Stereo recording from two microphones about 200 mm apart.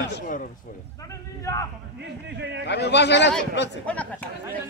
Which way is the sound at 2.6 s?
60° left (ahead or behind).